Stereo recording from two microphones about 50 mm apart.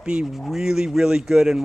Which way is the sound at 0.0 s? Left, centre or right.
Right.